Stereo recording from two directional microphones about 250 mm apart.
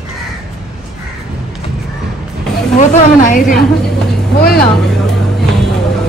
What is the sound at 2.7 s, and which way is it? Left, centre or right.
Speech, left.